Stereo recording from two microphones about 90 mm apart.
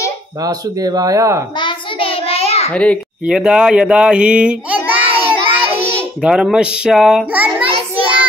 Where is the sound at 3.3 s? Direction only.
10° right (ahead or behind).